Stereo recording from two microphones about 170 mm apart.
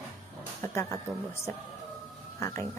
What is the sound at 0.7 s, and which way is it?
A woman's voice, 15° left (ahead or behind).